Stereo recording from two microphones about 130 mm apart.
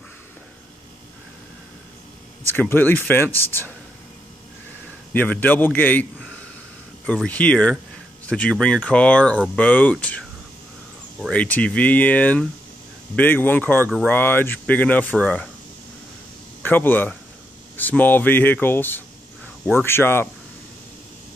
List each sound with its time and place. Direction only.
2.5 s speech: 15° left (ahead or behind)
5.1 s speech: 15° left (ahead or behind)
7.2 s speech: 10° left (ahead or behind)
16.6 s speech: 15° left (ahead or behind)